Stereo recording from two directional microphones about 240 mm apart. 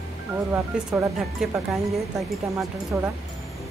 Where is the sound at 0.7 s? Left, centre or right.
Centre.